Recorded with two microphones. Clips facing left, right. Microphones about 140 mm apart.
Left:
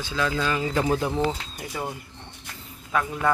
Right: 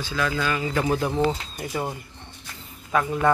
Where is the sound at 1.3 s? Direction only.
5° right (ahead or behind).